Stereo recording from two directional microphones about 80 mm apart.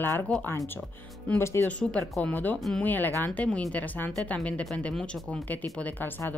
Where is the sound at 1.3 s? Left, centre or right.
Left.